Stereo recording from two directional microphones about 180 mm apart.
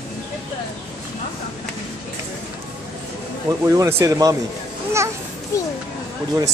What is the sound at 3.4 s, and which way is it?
Speech, 15° right (ahead or behind).